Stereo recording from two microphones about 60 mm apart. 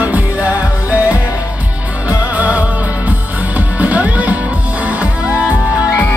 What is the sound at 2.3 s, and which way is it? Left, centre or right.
Music, right.